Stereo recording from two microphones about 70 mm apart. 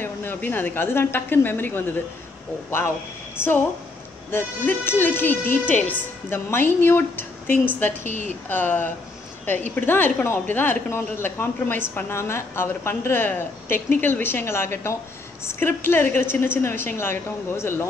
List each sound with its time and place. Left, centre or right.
0.0 s speech: left
3.3 s a woman's voice: left